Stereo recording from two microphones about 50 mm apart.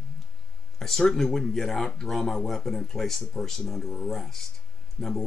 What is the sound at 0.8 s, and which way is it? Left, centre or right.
Speech, centre.